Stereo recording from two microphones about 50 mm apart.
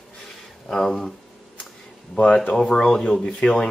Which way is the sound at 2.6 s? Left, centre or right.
Centre.